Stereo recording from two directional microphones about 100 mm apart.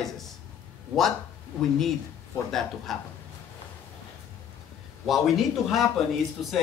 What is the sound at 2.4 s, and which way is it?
Speech, centre (ahead or behind).